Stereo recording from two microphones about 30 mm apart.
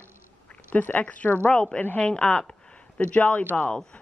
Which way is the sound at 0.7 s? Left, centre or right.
Left.